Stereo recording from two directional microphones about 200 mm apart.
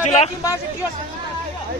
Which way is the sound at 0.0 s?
35° left (ahead or behind).